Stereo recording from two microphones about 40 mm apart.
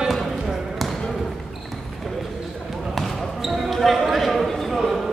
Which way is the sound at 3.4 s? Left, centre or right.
Centre.